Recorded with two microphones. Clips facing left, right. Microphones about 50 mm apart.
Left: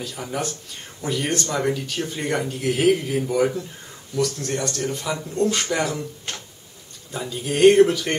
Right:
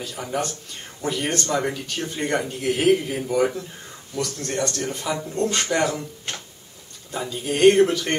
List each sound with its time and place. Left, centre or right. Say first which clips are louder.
0.0 s speech: right 1 dB; centre